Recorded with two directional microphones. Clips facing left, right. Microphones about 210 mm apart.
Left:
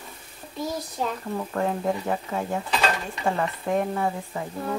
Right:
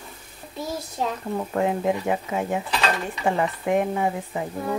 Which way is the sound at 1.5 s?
15° right (ahead or behind).